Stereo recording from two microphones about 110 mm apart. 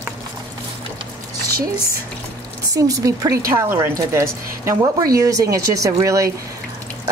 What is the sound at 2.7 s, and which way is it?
Speech, 30° right (ahead or behind).